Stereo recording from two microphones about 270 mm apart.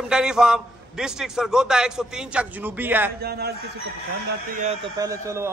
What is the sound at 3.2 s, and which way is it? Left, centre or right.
A man's voice, right.